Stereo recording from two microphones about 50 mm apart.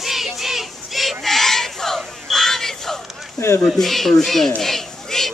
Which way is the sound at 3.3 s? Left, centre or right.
Left.